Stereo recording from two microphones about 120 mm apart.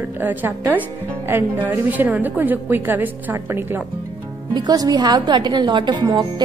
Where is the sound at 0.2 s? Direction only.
15° right (ahead or behind).